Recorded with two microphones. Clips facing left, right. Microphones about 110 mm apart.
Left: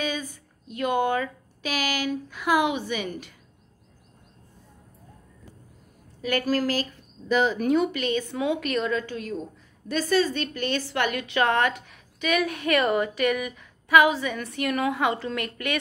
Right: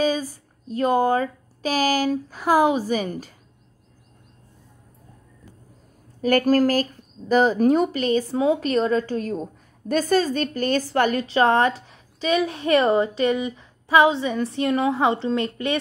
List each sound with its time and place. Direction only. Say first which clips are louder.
0.0 s speech: right 8 dB; 35° right (ahead or behind)
6.2 s speech: right 7 dB; 45° right (ahead or behind); by 15.8 s 30° right (ahead or behind)